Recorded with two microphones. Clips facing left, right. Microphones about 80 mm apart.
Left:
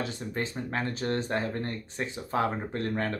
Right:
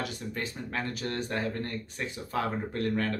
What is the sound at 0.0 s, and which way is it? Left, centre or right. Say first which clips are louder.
Speech: left 2 dB; left.